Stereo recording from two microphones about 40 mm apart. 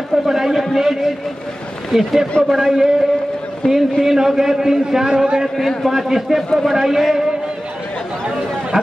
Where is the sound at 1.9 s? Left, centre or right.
Centre.